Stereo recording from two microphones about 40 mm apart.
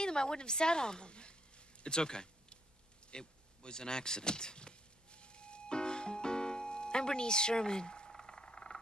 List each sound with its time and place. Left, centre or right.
0.0 s a woman's voice: centre
1.8 s a sound: centre
8.1 s vehicle: centre